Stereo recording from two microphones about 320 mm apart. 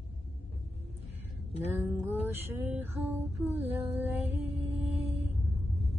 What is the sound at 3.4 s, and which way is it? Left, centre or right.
Music, centre.